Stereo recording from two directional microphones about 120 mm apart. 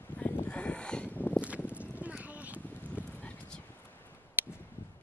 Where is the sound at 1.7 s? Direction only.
10° right (ahead or behind).